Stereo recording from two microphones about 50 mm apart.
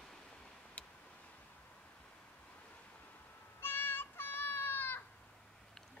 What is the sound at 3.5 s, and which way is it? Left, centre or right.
Child singing, left.